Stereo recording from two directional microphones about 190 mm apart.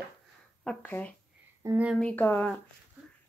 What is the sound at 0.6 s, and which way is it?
Speech, 10° left (ahead or behind).